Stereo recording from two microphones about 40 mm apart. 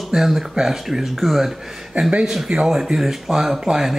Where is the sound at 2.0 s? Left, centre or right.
Right; by 3.6 s centre.